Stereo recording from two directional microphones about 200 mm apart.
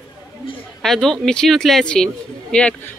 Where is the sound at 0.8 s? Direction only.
Centre (ahead or behind).